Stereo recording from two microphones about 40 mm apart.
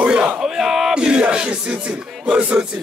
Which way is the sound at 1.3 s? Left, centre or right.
Right.